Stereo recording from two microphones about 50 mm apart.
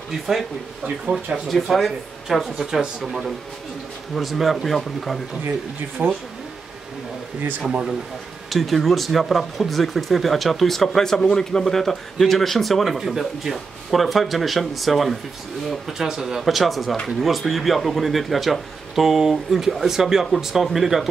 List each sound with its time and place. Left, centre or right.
0.1 s speech: centre
1.5 s speech: centre
6.0 s speech: right
8.5 s speech: centre